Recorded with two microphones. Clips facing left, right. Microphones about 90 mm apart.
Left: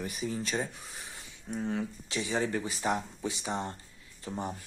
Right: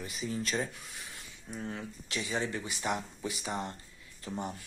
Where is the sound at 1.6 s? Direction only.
20° left (ahead or behind).